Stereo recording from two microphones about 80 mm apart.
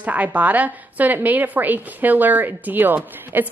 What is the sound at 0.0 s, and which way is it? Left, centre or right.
A woman's voice, centre.